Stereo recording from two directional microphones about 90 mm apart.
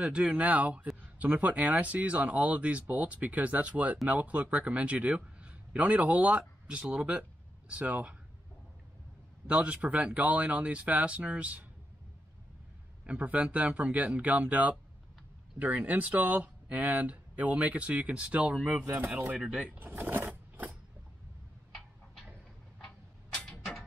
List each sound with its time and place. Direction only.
0.0 s a man's voice: 10° right (ahead or behind)
9.5 s speech: 15° right (ahead or behind)
13.0 s speech: 15° right (ahead or behind)
19.4 s vehicle: 10° right (ahead or behind)
21.7 s tick-tock: centre (ahead or behind)